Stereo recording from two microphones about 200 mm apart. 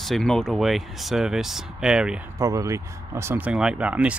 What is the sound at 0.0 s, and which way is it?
Speech, centre (ahead or behind).